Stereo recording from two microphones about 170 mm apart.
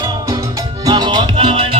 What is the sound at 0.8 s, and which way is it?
Music, 25° right (ahead or behind).